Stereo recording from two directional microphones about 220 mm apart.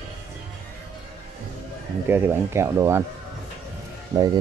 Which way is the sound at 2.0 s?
10° right (ahead or behind).